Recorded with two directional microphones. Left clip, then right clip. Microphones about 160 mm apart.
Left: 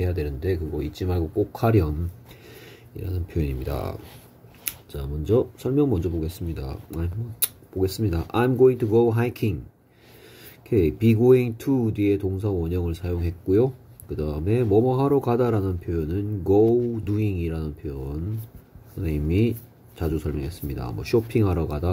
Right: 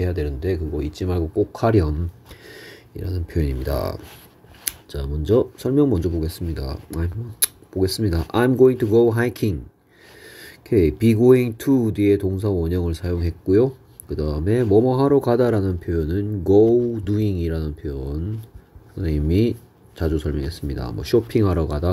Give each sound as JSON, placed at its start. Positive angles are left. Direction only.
{"t": 0.0, "sound": "speech", "side_deg": -15}